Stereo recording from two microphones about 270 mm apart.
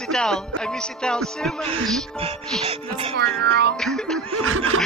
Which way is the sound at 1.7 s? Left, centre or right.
Right.